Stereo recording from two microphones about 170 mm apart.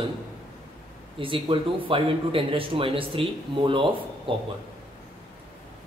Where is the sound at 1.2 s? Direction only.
30° right (ahead or behind).